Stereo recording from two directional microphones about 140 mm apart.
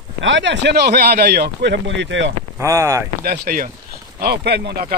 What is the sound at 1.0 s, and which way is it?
Speech, 90° right.